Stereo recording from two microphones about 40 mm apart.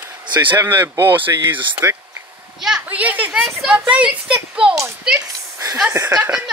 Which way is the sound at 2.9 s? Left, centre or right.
Right.